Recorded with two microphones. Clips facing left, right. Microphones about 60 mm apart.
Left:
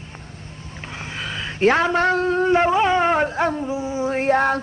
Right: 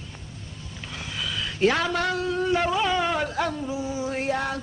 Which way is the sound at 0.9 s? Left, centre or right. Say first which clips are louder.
Left 2 dB; left.